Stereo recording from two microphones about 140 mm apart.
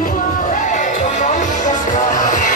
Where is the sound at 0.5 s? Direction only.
60° left (ahead or behind).